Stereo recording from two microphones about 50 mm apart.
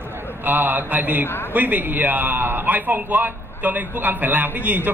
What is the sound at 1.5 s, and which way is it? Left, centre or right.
A man's voice, right.